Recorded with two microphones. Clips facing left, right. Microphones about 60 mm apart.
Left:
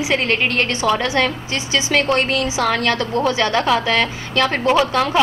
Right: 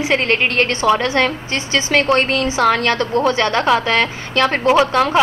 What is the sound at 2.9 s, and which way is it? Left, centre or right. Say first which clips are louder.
Speech: right 2 dB; right.